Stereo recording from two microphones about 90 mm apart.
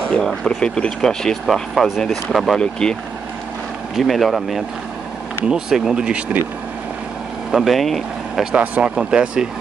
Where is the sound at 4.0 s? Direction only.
Centre (ahead or behind).